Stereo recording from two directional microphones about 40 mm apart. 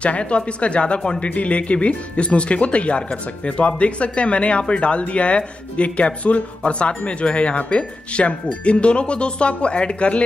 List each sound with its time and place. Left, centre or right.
0.0 s speech: left